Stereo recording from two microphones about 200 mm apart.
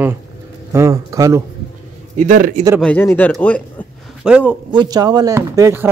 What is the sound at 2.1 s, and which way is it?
Speech, 40° right (ahead or behind).